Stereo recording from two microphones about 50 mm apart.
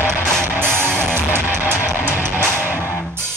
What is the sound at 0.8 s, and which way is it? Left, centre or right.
Music, right.